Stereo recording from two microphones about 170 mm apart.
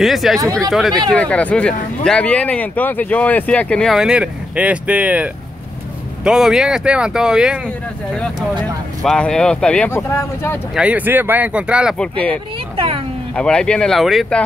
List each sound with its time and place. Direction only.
0.0 s speech: centre (ahead or behind); by 10.6 s 15° left (ahead or behind)
10.7 s speech: 5° right (ahead or behind)
12.7 s a sound: 35° right (ahead or behind)
13.3 s speech: 5° left (ahead or behind)